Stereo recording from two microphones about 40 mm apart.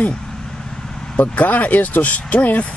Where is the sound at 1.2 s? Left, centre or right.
Left.